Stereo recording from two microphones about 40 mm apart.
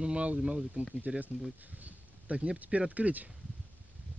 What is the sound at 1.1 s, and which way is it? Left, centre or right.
Speech, right.